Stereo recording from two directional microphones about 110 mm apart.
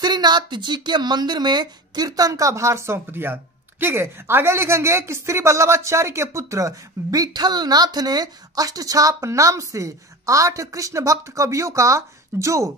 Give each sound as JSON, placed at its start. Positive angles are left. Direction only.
{"t": 0.0, "sound": "speech", "side_deg": -40}